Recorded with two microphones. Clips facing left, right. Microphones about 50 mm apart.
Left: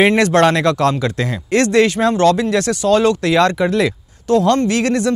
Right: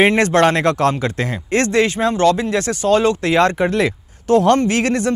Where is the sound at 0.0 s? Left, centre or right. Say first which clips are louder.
Left 1 dB; centre.